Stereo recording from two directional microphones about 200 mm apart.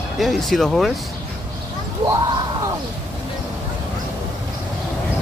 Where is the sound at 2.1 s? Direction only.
15° right (ahead or behind).